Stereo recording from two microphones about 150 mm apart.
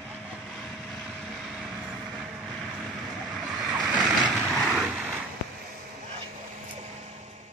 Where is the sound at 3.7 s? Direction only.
25° right (ahead or behind).